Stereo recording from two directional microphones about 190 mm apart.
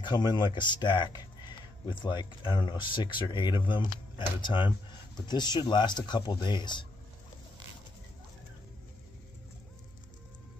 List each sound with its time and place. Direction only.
0.0 s speech: 20° left (ahead or behind)